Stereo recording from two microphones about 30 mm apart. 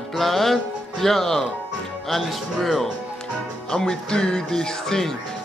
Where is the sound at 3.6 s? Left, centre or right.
Left.